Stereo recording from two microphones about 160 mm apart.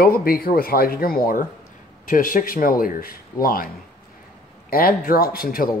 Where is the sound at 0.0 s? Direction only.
65° left (ahead or behind).